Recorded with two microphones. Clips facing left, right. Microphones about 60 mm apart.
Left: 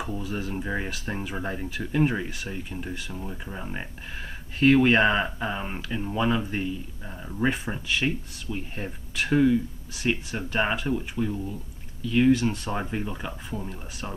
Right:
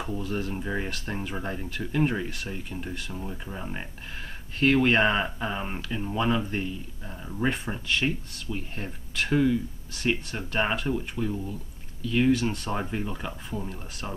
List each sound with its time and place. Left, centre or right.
0.0 s speech: centre